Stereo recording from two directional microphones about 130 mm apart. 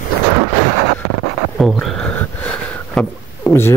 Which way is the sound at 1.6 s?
Centre (ahead or behind).